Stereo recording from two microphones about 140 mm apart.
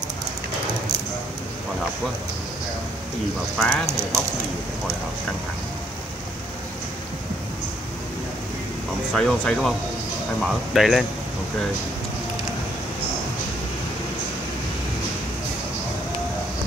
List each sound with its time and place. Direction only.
3.5 s speech: centre (ahead or behind)
9.1 s speech: 5° left (ahead or behind)